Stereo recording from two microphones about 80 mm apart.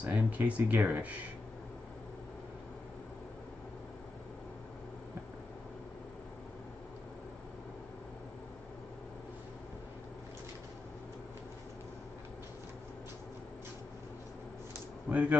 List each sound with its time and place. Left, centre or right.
0.0 s speech: centre
15.0 s speech: centre